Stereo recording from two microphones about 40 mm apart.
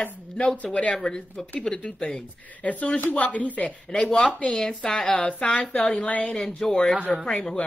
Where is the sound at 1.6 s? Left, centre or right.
Left.